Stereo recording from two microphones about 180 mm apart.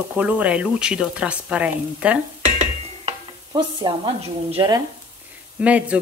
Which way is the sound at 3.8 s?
25° right (ahead or behind).